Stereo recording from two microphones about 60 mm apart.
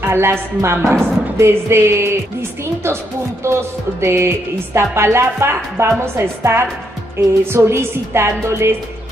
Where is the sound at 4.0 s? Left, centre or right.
Right.